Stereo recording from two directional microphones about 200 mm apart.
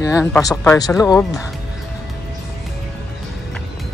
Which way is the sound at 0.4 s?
15° left (ahead or behind).